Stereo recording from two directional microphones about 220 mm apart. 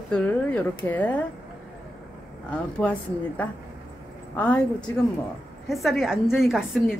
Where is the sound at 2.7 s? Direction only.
5° left (ahead or behind).